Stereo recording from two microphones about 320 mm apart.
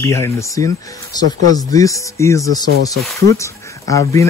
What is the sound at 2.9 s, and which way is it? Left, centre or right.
Speech, centre.